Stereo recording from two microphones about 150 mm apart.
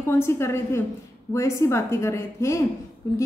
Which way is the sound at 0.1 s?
15° left (ahead or behind).